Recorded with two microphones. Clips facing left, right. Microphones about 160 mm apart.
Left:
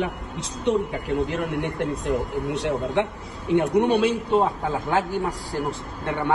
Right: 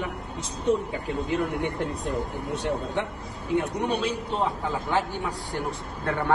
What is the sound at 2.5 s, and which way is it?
A man's voice, 75° left (ahead or behind).